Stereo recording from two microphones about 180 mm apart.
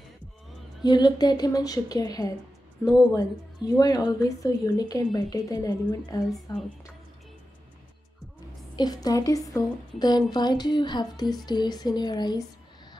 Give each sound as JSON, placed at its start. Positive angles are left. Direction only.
{"t": 0.8, "sound": "a woman's voice", "side_deg": 25}
{"t": 8.7, "sound": "a woman's voice", "side_deg": 20}